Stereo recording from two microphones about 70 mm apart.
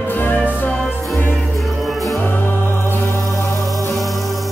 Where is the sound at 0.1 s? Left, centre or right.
Left.